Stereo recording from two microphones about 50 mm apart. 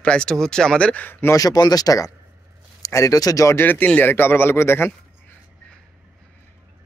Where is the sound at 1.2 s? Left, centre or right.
Left.